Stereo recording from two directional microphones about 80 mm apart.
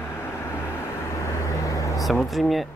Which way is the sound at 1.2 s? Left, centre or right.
Left.